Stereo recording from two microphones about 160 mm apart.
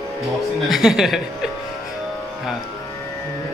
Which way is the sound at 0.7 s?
Centre (ahead or behind).